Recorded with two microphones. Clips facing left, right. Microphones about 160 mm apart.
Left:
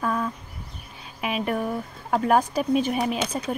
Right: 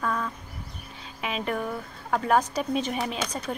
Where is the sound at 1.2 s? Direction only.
15° left (ahead or behind).